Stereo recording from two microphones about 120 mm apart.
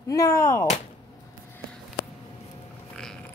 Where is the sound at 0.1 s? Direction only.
25° left (ahead or behind).